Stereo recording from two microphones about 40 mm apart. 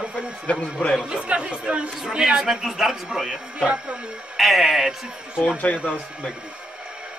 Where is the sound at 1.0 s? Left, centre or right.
Right; by 3.0 s centre.